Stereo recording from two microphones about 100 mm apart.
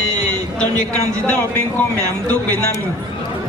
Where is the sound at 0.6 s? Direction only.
10° left (ahead or behind).